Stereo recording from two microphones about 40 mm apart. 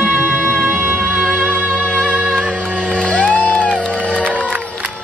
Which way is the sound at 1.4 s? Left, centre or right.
Right.